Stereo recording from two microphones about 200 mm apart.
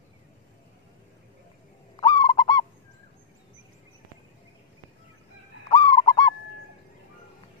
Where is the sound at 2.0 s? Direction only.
20° left (ahead or behind).